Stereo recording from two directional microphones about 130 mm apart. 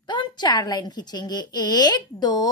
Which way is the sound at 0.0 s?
35° left (ahead or behind).